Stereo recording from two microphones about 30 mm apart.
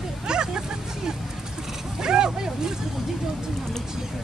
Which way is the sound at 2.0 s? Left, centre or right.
Right.